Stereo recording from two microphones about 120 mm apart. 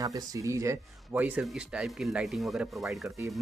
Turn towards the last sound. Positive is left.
turn(degrees=0)  # may be behind; listen again after turning